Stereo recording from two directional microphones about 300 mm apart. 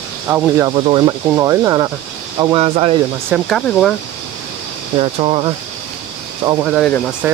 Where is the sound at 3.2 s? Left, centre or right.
Centre.